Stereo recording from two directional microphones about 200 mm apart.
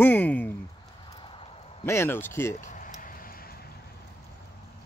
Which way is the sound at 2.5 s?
40° left (ahead or behind).